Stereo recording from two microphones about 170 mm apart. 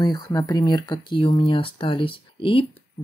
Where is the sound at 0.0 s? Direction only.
25° left (ahead or behind).